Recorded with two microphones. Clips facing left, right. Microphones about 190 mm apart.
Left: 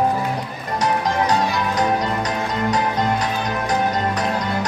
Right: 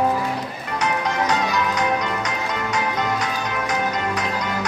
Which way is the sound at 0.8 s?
35° left (ahead or behind).